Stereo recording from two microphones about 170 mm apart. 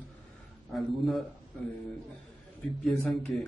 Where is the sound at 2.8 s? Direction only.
5° left (ahead or behind).